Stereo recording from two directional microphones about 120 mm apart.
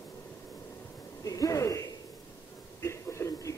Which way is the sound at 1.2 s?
30° left (ahead or behind).